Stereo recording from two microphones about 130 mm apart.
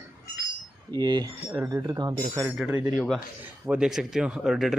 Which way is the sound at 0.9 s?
30° right (ahead or behind).